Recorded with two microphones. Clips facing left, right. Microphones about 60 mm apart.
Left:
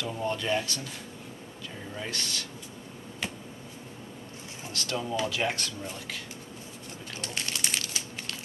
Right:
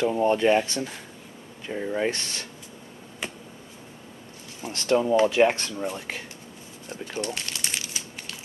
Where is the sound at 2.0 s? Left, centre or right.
Right.